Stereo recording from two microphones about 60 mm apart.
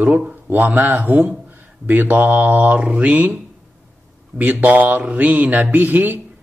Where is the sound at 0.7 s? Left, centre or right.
Right.